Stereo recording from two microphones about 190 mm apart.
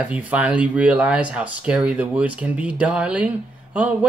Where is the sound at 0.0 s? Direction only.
10° right (ahead or behind).